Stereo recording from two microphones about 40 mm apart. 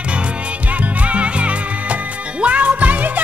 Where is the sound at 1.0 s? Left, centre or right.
Right.